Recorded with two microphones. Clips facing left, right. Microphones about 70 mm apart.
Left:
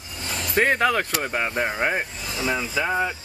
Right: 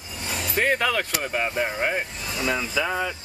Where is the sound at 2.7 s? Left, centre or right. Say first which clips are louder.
Left 2 dB; left.